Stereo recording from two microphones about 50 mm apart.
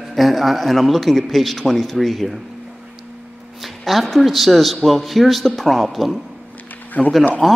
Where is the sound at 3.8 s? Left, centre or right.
Centre.